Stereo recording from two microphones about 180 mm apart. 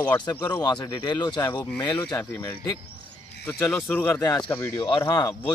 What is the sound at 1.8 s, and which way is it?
Speech, 25° left (ahead or behind).